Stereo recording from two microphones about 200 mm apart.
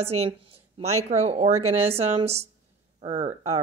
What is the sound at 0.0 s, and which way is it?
A woman's voice, 30° right (ahead or behind).